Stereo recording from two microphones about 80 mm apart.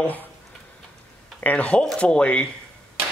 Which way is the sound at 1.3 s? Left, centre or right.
Centre.